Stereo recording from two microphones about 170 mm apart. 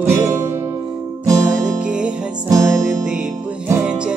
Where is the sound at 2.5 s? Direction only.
20° right (ahead or behind).